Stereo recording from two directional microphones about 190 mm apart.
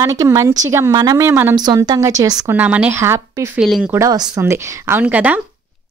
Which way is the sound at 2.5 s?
10° right (ahead or behind).